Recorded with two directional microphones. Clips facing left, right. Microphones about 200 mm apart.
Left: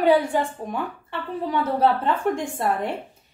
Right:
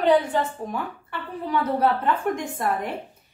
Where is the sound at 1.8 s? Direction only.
25° left (ahead or behind).